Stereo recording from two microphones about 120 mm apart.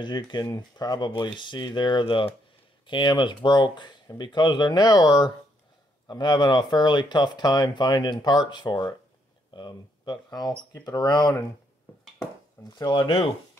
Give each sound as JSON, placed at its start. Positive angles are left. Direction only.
{"t": 0.0, "sound": "speech", "side_deg": 40}
{"t": 12.6, "sound": "speech", "side_deg": 35}